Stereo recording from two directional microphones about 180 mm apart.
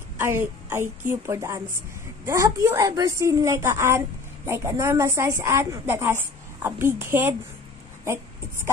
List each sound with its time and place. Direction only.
0.2 s a woman's voice: 15° right (ahead or behind)